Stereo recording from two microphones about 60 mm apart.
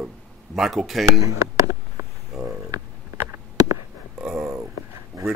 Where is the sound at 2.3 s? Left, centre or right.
Centre.